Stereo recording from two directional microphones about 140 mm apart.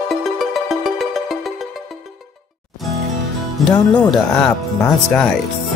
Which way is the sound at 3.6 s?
Centre (ahead or behind).